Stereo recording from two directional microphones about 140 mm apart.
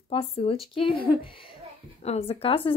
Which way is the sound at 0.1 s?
45° left (ahead or behind).